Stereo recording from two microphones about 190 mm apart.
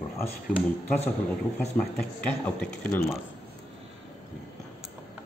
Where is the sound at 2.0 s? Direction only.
5° left (ahead or behind).